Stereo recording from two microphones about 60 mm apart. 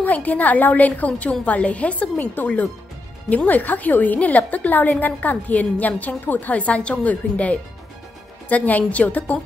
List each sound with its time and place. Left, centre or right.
0.0 s a woman's voice: left